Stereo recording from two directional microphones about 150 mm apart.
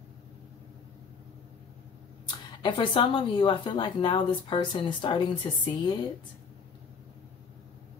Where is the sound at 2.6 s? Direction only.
35° left (ahead or behind).